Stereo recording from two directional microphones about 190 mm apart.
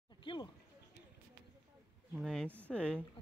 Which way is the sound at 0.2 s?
25° left (ahead or behind).